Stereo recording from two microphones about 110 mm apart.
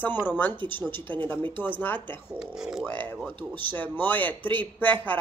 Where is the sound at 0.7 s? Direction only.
15° left (ahead or behind).